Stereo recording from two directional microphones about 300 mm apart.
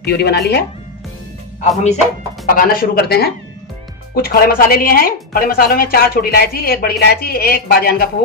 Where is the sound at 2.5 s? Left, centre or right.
Left.